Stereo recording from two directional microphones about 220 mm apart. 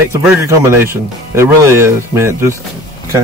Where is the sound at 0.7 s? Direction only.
10° right (ahead or behind).